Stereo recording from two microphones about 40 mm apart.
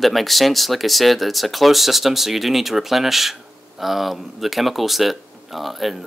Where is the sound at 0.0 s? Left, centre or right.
Centre.